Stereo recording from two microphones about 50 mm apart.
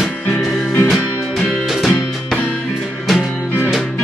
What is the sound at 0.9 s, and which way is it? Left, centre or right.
Music, centre.